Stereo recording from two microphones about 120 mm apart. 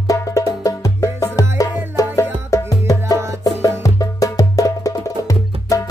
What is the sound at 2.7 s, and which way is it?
Music, 30° left (ahead or behind).